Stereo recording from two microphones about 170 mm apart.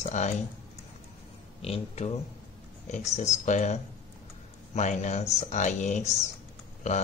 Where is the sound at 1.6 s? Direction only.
40° left (ahead or behind).